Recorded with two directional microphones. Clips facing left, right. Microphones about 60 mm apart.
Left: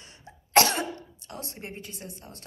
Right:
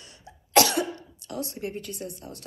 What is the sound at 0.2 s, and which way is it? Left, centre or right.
A woman's voice, left.